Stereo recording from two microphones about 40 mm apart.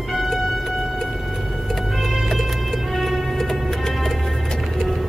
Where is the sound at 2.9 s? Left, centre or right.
Centre.